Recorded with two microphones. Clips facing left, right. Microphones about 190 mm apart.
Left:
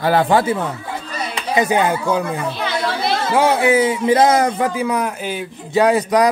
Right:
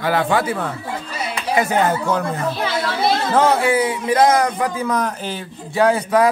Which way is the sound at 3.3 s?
15° left (ahead or behind).